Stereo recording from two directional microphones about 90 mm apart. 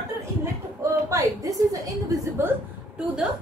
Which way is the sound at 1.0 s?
40° right (ahead or behind).